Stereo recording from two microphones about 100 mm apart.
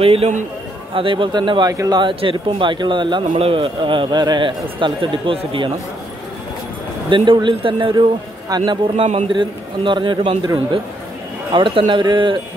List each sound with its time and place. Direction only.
0.0 s a man's voice: 75° right (ahead or behind)
0.9 s a man's voice: 60° right (ahead or behind)
1.7 s speech: 40° right (ahead or behind)
3.3 s a man's voice: 70° right (ahead or behind)
7.1 s a man's voice: 55° right (ahead or behind)
8.9 s a man's voice: 65° right (ahead or behind)